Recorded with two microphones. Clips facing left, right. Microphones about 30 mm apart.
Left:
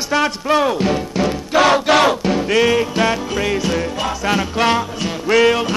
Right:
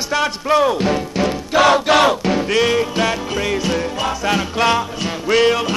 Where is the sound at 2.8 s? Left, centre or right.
Centre.